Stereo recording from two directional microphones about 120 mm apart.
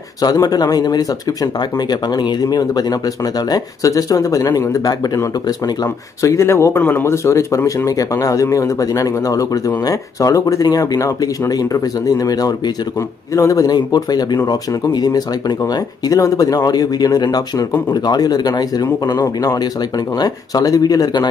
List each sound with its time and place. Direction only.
0.2 s speech: 35° left (ahead or behind)
6.2 s speech: 25° left (ahead or behind)